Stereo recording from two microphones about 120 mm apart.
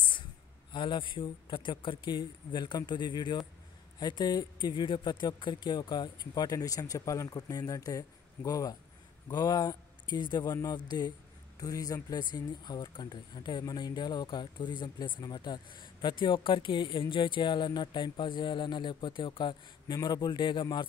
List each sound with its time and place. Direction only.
0.7 s speech: 40° left (ahead or behind)